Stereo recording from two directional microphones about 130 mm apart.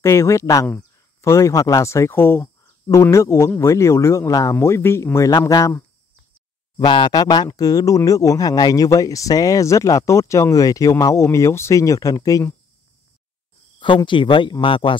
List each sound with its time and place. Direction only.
0.0 s speech: 20° left (ahead or behind)
6.8 s speech: 35° left (ahead or behind)
13.7 s speech: 40° left (ahead or behind)